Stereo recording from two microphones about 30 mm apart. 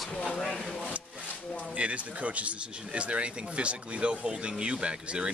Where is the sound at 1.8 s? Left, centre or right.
Right.